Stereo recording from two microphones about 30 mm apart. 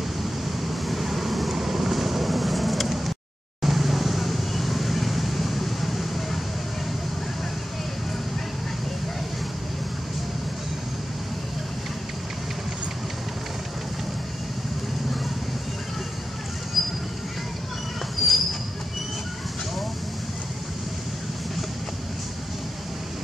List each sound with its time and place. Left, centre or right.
0.2 s vehicle: centre
16.8 s train: centre
18.2 s a sound: centre